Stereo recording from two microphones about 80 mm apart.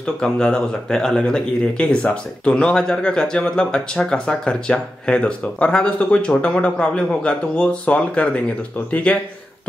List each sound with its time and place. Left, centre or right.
0.0 s speech: centre